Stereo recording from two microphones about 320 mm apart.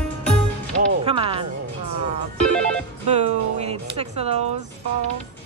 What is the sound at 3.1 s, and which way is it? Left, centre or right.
Music, centre.